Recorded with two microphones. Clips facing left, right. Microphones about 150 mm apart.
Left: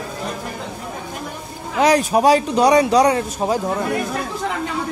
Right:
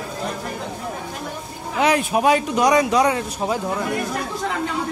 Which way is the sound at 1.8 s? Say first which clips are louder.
Left 3 dB; 35° left (ahead or behind).